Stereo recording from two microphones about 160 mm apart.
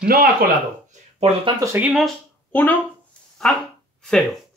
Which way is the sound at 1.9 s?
Centre (ahead or behind).